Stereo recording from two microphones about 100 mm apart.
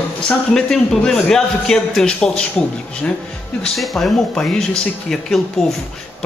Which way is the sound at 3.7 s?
Centre (ahead or behind).